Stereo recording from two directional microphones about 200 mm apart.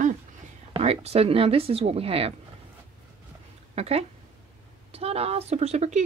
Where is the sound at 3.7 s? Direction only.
30° right (ahead or behind).